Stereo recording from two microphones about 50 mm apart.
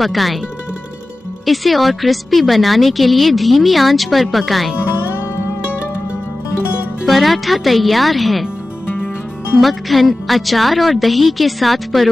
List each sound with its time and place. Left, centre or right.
0.0 s a woman's voice: centre
1.4 s a woman's voice: centre
4.7 s music: left
7.1 s a woman's voice: centre
9.6 s a woman's voice: centre